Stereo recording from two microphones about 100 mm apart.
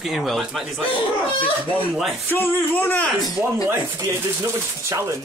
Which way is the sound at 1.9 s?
5° right (ahead or behind).